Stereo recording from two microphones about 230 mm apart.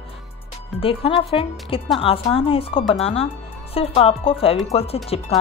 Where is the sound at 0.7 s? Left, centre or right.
Left.